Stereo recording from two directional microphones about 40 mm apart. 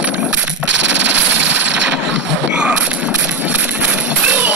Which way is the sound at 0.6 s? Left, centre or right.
Right.